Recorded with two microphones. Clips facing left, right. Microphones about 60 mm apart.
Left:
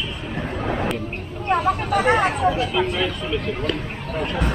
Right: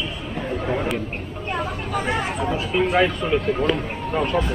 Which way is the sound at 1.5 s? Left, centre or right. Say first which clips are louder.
Left 7 dB; left.